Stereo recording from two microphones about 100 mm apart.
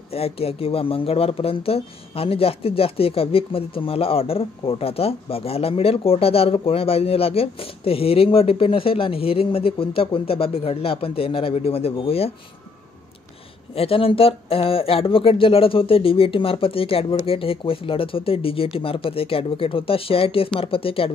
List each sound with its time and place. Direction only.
0.1 s speech: 80° left
13.7 s speech: 70° left (ahead or behind)